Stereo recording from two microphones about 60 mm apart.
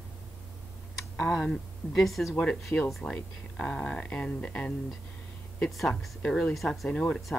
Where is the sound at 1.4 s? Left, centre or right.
Centre.